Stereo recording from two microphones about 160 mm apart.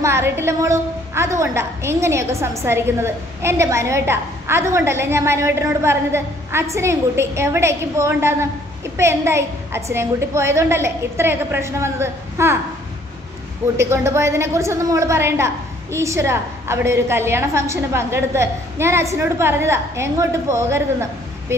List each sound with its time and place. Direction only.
0.0 s a woman's voice: 15° right (ahead or behind)
13.7 s a woman's voice: 15° right (ahead or behind)